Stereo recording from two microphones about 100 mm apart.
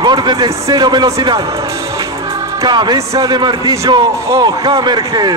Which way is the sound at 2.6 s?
45° right (ahead or behind).